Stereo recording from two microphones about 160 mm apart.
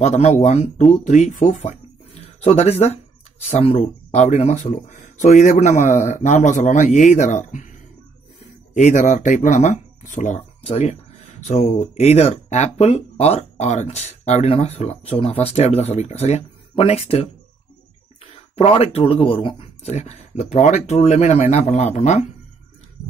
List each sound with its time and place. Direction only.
0.0 s speech: 45° left (ahead or behind)
8.7 s speech: 50° left (ahead or behind)